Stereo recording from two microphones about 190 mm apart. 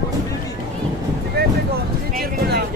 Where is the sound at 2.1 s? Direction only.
60° right (ahead or behind).